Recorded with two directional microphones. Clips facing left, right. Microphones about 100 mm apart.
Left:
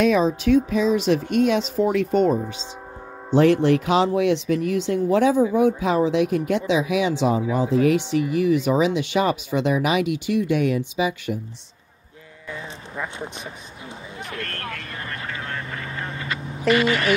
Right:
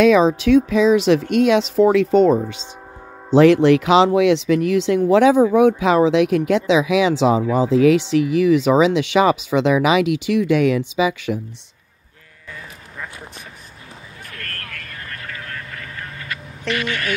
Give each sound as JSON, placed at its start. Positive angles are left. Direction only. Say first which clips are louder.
{"t": 0.0, "sound": "speech", "louder": "right 5 dB", "side_deg": -90}
{"t": 12.9, "sound": "speech", "louder": "left 4 dB", "side_deg": 20}
{"t": 14.3, "sound": "vehicle", "louder": "left 3 dB", "side_deg": 20}
{"t": 16.7, "sound": "speech", "louder": "left 4 dB", "side_deg": 25}